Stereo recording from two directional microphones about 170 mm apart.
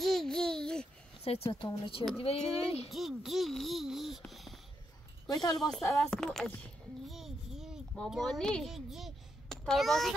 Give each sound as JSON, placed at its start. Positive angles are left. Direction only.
{"t": 0.0, "sound": "a sound", "side_deg": 0}
{"t": 1.5, "sound": "speech", "side_deg": 30}
{"t": 2.9, "sound": "speech", "side_deg": 0}
{"t": 4.2, "sound": "a sound", "side_deg": 0}
{"t": 5.3, "sound": "speech", "side_deg": 25}
{"t": 5.9, "sound": "a child's voice", "side_deg": 0}